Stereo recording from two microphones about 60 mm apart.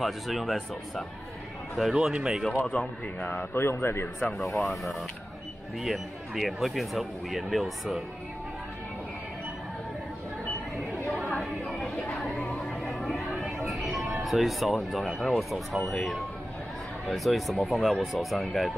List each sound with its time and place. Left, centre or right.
0.0 s speech: centre
2.6 s speech: centre
3.3 s speech: left
4.3 s speech: centre
11.3 s chatter: centre
13.3 s a sound: centre
14.2 s speech: centre